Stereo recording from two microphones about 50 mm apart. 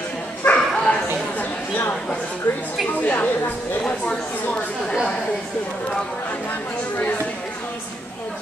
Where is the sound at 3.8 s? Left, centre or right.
Left.